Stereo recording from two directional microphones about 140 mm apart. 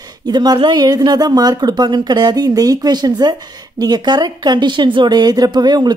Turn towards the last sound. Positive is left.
turn(degrees=-30)  # may be behind; listen again after turning